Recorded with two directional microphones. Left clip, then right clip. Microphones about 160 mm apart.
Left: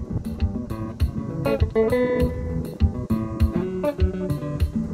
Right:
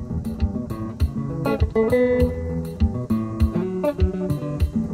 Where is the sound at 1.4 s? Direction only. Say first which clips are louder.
Even; 15° left (ahead or behind).